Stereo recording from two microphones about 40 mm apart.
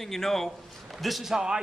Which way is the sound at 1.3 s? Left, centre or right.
Centre.